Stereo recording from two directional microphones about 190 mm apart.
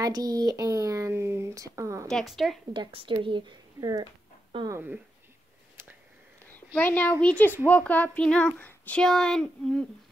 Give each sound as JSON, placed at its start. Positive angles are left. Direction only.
{"t": 0.0, "sound": "a child's voice", "side_deg": -20}
{"t": 2.0, "sound": "speech", "side_deg": 0}
{"t": 2.7, "sound": "speech", "side_deg": -25}
{"t": 6.4, "sound": "a child's voice", "side_deg": 10}